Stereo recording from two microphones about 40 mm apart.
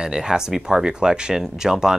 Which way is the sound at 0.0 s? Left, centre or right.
Centre.